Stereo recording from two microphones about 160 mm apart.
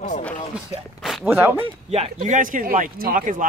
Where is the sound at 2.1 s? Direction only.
55° right (ahead or behind).